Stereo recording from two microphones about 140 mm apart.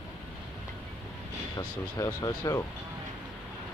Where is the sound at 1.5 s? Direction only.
25° left (ahead or behind).